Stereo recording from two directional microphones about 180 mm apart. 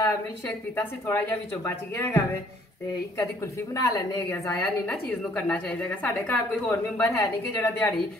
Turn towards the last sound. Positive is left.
turn(degrees=15)  # may be behind; listen again after turning